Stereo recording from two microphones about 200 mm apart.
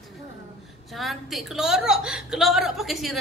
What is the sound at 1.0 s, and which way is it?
A woman's voice, centre (ahead or behind).